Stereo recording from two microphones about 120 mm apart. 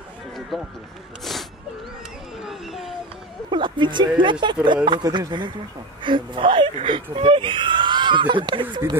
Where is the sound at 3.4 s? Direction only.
40° right (ahead or behind).